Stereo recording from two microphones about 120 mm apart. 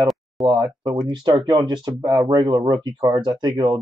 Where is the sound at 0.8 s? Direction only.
35° right (ahead or behind).